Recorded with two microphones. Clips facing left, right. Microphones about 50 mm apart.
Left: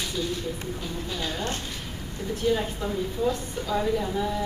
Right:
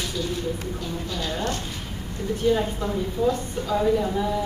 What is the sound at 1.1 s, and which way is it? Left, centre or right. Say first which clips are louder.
Speech: right 2 dB; centre.